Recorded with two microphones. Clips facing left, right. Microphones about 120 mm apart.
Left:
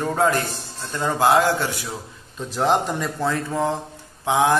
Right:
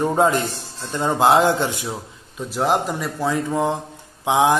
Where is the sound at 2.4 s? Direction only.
5° right (ahead or behind).